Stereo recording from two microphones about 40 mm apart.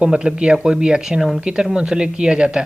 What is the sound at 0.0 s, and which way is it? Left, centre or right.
Speech, right.